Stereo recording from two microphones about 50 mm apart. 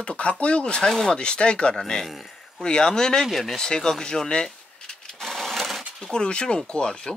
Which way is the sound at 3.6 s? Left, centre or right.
Centre.